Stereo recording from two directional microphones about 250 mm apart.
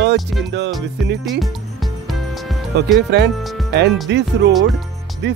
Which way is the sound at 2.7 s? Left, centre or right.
Right.